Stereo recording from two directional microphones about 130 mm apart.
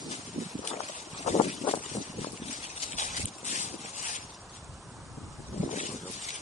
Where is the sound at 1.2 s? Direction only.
60° left (ahead or behind).